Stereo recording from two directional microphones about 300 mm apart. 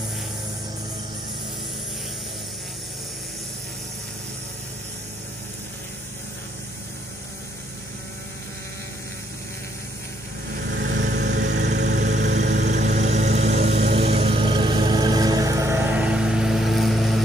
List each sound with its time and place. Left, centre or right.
10.7 s vehicle: right; by 17.2 s centre